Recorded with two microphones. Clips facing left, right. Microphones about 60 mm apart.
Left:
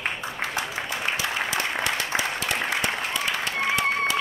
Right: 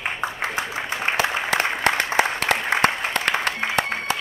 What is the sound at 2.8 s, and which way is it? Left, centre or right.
Applause, right.